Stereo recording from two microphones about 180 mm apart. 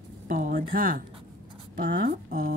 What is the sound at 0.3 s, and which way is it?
A woman's voice, 50° right (ahead or behind).